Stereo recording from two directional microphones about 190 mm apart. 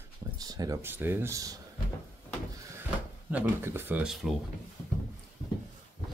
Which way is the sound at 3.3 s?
10° right (ahead or behind).